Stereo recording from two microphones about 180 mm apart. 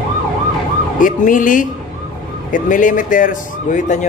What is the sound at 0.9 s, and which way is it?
A man's voice, 45° left (ahead or behind).